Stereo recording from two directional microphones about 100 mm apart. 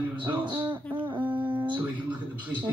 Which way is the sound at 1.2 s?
15° right (ahead or behind).